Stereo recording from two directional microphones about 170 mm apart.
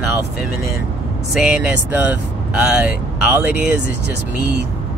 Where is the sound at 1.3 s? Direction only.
5° right (ahead or behind).